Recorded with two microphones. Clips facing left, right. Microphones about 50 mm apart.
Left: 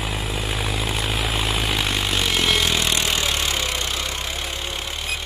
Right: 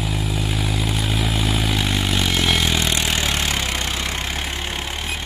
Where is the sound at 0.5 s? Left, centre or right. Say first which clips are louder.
Right 1 dB; centre.